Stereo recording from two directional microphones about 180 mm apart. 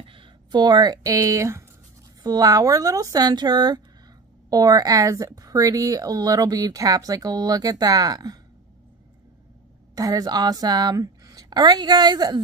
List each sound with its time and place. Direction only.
0.0 s speech: 25° right (ahead or behind)
9.9 s speech: 20° right (ahead or behind)